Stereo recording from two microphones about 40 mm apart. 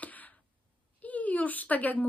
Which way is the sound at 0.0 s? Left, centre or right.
Left.